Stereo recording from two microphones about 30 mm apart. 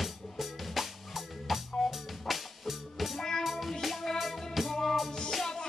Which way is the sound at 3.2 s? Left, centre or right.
Centre.